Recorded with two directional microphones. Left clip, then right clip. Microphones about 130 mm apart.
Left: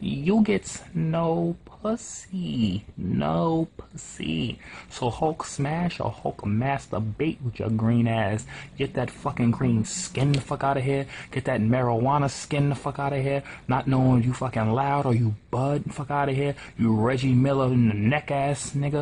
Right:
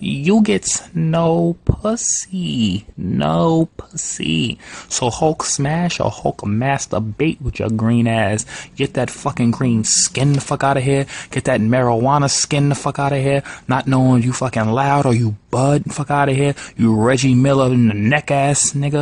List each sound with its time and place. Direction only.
0.0 s a man's voice: 35° right (ahead or behind)